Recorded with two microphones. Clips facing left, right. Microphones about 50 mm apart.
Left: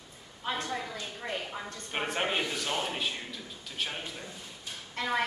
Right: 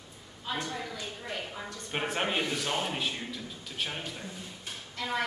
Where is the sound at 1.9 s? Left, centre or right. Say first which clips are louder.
Even; centre.